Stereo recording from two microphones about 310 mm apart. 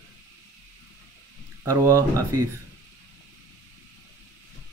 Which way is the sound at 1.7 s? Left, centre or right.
Centre.